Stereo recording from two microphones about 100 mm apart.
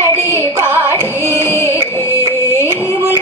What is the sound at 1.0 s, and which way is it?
Music, 25° left (ahead or behind).